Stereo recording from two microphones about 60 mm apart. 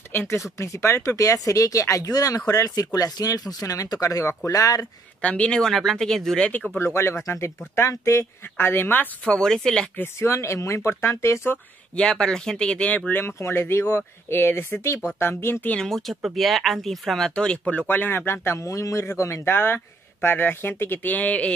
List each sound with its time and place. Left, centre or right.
0.1 s speech: left
0.6 s speech: left
5.2 s speech: centre
5.6 s speech: centre
6.8 s speech: left
8.5 s speech: left
9.3 s speech: centre
10.2 s speech: left
11.5 s speech: centre
13.1 s speech: left
15.8 s speech: centre
17.6 s speech: left
18.7 s a man's voice: left
19.4 s speech: left